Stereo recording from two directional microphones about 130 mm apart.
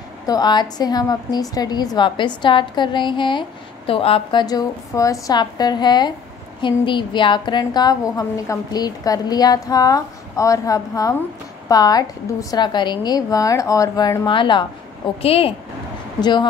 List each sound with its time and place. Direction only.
0.3 s a woman's voice: 35° left (ahead or behind)
16.2 s a woman's voice: 35° left (ahead or behind)